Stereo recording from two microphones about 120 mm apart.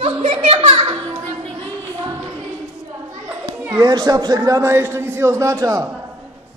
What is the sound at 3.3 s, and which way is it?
Children playing, 15° right (ahead or behind).